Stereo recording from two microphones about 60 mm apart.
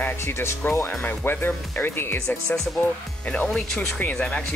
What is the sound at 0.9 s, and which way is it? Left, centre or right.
Speech, left.